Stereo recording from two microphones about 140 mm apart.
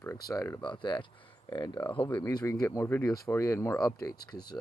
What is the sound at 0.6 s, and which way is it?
Speech, 35° left (ahead or behind).